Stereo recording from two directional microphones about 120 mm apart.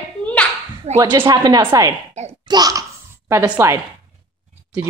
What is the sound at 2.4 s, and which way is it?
Babbling, 35° right (ahead or behind).